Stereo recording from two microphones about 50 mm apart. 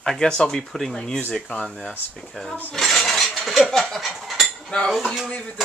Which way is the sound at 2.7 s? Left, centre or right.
Centre.